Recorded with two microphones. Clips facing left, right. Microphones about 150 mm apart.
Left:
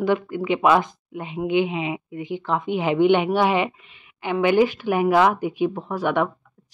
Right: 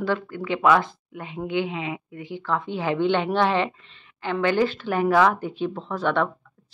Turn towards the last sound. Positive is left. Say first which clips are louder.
# left 1 dB
turn(degrees=10)  # may be behind; listen again after turning